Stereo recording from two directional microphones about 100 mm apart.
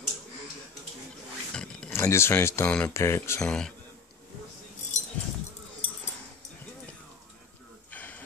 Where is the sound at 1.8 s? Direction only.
30° left (ahead or behind).